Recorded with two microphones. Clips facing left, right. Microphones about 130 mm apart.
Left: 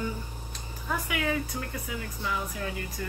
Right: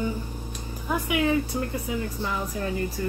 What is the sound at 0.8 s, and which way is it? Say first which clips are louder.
A woman's voice: right 6 dB; 20° right (ahead or behind).